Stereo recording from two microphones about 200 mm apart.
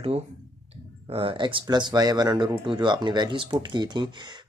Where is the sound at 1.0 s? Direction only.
25° right (ahead or behind).